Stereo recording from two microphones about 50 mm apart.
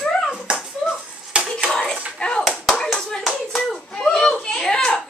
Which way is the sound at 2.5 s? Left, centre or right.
Centre.